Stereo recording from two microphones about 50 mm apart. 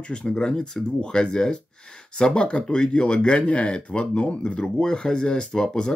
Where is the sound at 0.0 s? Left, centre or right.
Centre.